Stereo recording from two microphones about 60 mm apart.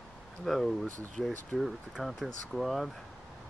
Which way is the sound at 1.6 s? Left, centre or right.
Centre.